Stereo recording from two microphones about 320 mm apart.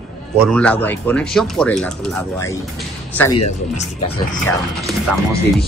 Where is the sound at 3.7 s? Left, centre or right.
Left.